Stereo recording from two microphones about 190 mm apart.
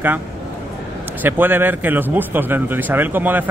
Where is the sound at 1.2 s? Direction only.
10° right (ahead or behind).